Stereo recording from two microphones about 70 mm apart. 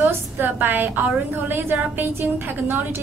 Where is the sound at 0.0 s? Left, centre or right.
Right.